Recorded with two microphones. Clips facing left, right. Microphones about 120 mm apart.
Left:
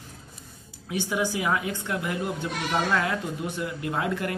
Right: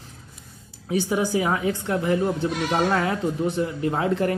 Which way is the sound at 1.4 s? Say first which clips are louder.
Right 4 dB; 30° right (ahead or behind).